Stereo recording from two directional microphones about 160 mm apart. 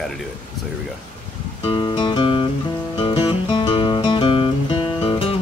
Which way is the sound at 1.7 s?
30° left (ahead or behind).